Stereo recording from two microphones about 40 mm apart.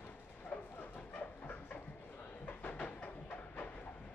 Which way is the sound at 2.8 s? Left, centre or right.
Left.